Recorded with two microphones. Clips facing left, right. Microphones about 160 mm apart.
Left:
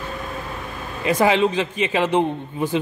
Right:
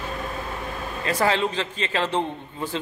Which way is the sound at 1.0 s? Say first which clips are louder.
Left 5 dB; 15° left (ahead or behind).